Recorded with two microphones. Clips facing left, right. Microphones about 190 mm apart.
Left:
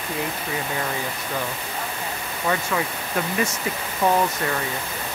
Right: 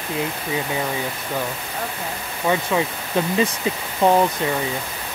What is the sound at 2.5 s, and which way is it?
Speech, 20° right (ahead or behind).